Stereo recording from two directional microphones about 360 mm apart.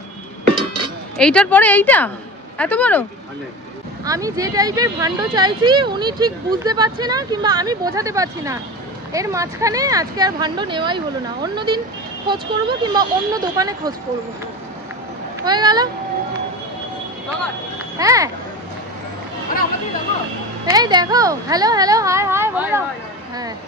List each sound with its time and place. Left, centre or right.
1.1 s speech: centre
4.0 s speech: centre
15.4 s speech: centre
17.9 s speech: centre
20.7 s speech: centre